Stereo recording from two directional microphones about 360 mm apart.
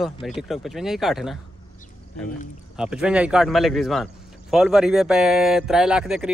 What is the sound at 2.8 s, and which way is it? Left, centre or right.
A man's voice, centre.